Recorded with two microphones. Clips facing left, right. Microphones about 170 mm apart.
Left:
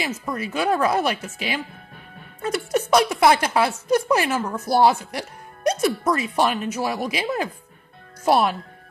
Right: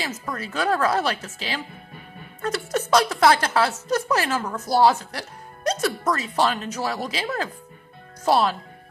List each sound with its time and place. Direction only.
0.0 s a woman's voice: 10° left (ahead or behind)